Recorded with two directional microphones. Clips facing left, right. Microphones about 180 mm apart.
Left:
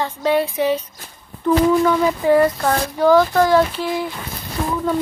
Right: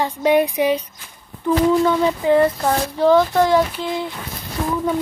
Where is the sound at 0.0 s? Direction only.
15° right (ahead or behind).